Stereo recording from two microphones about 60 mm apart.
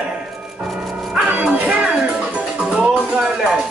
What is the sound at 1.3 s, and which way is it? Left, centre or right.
Music, right.